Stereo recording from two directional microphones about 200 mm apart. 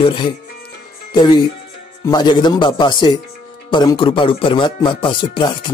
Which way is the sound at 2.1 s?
20° left (ahead or behind).